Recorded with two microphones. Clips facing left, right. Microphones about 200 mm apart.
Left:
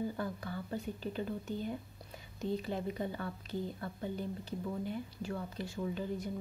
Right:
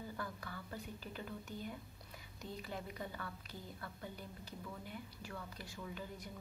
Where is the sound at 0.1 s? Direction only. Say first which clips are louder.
Left 7 dB; 30° left (ahead or behind).